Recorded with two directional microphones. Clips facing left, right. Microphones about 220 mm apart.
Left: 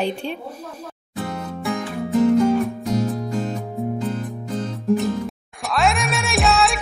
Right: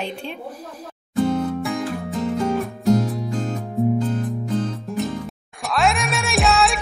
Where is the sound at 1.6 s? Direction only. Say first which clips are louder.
Even; centre (ahead or behind).